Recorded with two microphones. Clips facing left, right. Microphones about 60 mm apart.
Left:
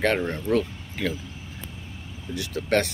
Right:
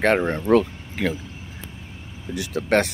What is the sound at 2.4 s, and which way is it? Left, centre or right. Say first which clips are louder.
Speech: right 3 dB; right.